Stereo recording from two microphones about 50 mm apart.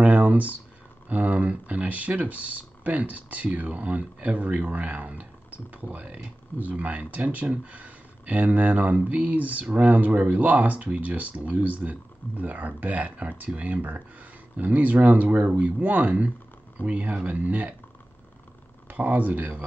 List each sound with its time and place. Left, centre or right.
0.0 s a sound: right
1.0 s speech: right
18.9 s speech: right